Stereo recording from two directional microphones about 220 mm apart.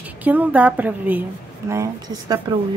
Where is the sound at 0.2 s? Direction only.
5° right (ahead or behind).